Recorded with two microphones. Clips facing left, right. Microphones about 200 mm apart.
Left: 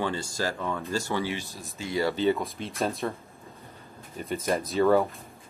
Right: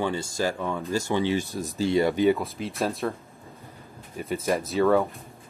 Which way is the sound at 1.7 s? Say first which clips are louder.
Right 8 dB; 30° right (ahead or behind).